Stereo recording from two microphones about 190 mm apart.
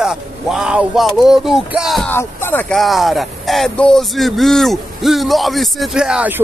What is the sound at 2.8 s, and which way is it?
Speech, centre (ahead or behind).